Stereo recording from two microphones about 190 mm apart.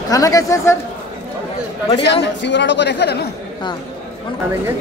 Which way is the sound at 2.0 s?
65° left (ahead or behind).